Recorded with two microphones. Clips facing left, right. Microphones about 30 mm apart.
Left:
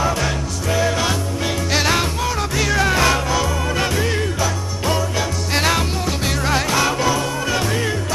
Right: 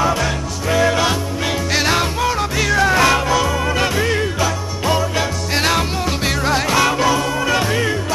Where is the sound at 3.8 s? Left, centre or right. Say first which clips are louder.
Right 2 dB; centre.